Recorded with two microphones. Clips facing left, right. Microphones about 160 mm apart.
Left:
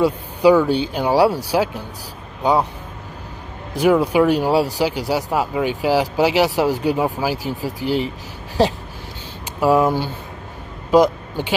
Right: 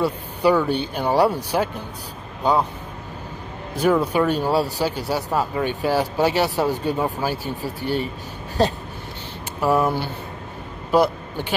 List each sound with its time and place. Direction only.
0.0 s speech: 10° left (ahead or behind)
3.7 s speech: 10° left (ahead or behind)
7.8 s speech: 90° left
9.6 s speech: 15° left (ahead or behind)